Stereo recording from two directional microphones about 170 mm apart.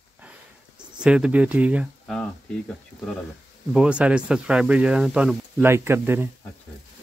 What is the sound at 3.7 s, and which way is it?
Speech, 5° right (ahead or behind).